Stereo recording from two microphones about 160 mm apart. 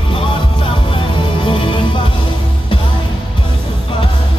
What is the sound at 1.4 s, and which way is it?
Music, 30° left (ahead or behind).